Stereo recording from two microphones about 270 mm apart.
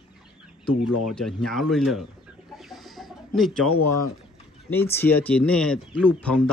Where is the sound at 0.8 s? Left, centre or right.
Left.